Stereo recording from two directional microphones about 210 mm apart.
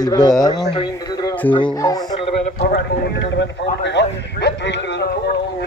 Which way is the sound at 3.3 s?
55° left (ahead or behind).